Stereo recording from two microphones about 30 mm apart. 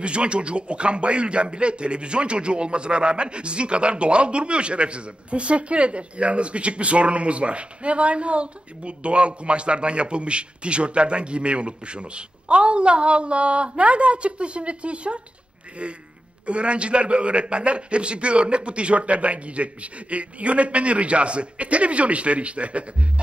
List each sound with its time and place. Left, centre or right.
0.0 s a man's voice: right